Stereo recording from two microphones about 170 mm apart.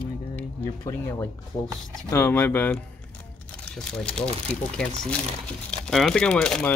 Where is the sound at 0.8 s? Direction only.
15° left (ahead or behind).